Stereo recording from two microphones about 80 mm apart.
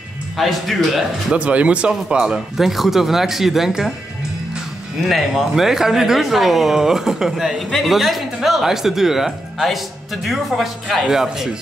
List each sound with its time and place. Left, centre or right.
0.4 s speech: centre
1.3 s speech: centre
5.0 s speech: centre